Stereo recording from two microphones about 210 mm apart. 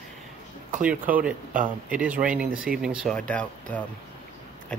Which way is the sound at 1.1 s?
40° right (ahead or behind).